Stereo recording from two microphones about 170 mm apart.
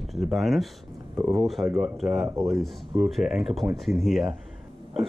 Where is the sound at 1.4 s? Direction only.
Centre (ahead or behind).